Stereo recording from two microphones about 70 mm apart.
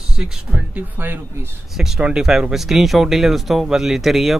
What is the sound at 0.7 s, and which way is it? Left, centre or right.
Speech, right.